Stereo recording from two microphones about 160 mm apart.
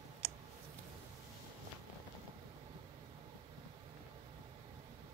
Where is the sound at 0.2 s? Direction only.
35° right (ahead or behind).